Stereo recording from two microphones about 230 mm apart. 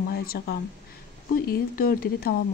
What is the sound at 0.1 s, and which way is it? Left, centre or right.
Speech, left.